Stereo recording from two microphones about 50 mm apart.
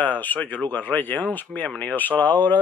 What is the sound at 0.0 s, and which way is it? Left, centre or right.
Speech, left.